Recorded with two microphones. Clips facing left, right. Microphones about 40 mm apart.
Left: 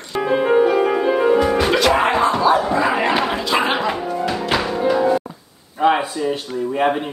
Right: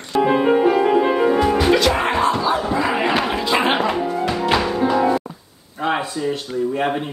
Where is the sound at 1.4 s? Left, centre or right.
Centre.